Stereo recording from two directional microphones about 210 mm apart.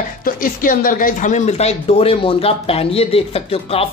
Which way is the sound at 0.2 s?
40° left (ahead or behind).